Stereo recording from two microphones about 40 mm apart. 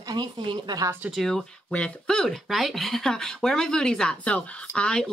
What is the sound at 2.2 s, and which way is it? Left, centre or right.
Speech, centre.